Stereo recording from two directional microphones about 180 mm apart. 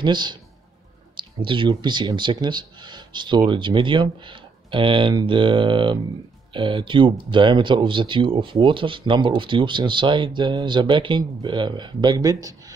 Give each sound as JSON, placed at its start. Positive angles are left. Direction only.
{"t": 0.0, "sound": "speech", "side_deg": -25}